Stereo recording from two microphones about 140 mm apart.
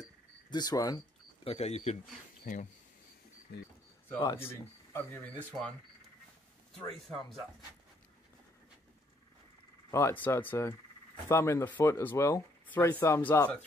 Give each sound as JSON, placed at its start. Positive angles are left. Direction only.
{"t": 0.0, "sound": "a sound", "side_deg": 30}
{"t": 1.4, "sound": "speech", "side_deg": 45}
{"t": 2.4, "sound": "speech", "side_deg": 65}
{"t": 4.1, "sound": "speech", "side_deg": 20}
{"t": 9.8, "sound": "speech", "side_deg": 20}